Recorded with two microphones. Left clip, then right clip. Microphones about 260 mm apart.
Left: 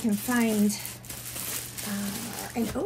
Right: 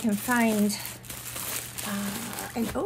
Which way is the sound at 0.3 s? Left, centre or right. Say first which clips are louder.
Right 2 dB; right.